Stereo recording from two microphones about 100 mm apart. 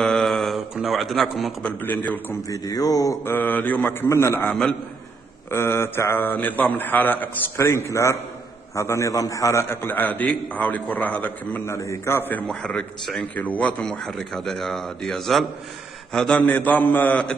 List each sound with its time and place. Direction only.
0.0 s a sound: centre (ahead or behind)
0.8 s a man's voice: centre (ahead or behind)
1.6 s a man's voice: 20° left (ahead or behind)
2.4 s speech: 35° left (ahead or behind)
3.3 s a man's voice: 20° left (ahead or behind)
11.6 s a man's voice: 30° left (ahead or behind)
12.4 s a man's voice: 5° left (ahead or behind)
13.2 s a man's voice: 15° left (ahead or behind)